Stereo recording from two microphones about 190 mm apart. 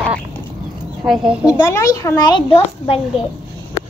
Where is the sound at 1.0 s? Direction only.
5° right (ahead or behind).